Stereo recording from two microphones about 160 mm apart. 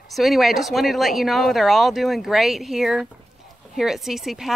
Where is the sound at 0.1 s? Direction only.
Centre (ahead or behind).